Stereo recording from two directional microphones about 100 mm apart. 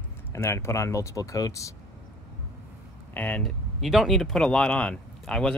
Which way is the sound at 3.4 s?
Centre (ahead or behind).